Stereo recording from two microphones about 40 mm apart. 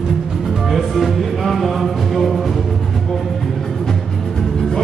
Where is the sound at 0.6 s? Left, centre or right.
Centre.